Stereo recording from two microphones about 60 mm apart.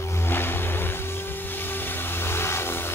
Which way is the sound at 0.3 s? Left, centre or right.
Left.